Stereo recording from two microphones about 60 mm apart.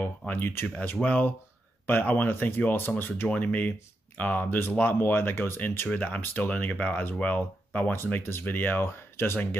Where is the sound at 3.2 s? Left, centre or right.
Left.